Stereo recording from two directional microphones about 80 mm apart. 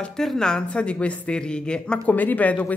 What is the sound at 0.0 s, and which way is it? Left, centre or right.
Speech, centre.